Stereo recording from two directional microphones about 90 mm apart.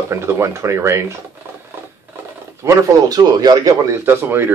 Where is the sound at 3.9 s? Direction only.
25° right (ahead or behind).